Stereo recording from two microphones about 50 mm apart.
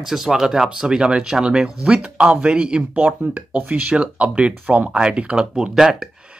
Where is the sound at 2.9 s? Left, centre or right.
Right; by 6.0 s centre.